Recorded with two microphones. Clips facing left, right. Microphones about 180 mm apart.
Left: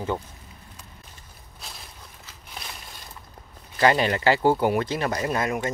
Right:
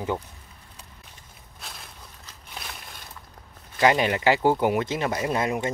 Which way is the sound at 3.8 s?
10° right (ahead or behind).